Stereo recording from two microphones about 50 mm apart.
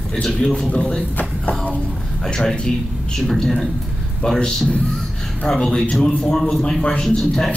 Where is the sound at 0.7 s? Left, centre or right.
Left.